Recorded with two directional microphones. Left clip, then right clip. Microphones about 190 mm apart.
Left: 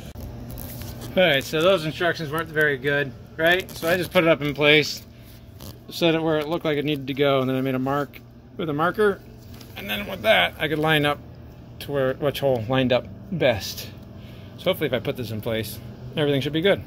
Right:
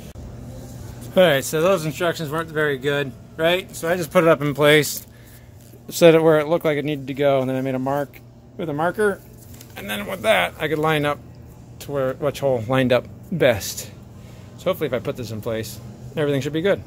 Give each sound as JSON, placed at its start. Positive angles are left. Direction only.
{"t": 1.1, "sound": "speech", "side_deg": -30}
{"t": 4.0, "sound": "speech", "side_deg": -25}
{"t": 5.9, "sound": "speech", "side_deg": -35}
{"t": 12.6, "sound": "speech", "side_deg": -15}
{"t": 14.6, "sound": "speech", "side_deg": 0}